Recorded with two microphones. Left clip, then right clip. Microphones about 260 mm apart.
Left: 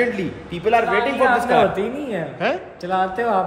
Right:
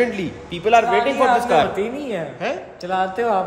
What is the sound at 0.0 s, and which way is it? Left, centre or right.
A man's voice, centre.